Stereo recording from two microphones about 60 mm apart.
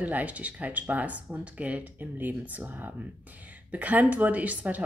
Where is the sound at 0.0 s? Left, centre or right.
Right.